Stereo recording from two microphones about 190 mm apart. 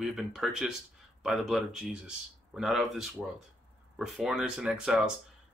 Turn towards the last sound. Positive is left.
turn(degrees=-5)  # may be behind; listen again after turning